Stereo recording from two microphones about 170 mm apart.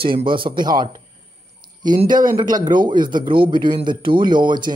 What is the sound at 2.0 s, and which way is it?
Speech, 25° right (ahead or behind).